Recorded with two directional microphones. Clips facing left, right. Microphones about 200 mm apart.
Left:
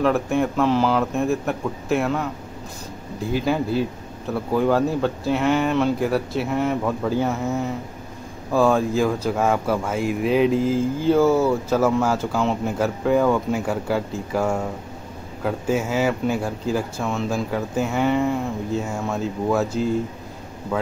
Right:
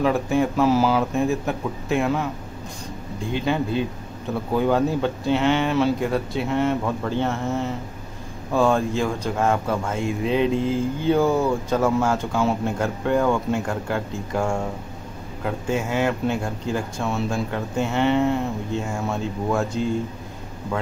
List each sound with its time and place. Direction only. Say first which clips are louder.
0.0 s speech: even; centre (ahead or behind)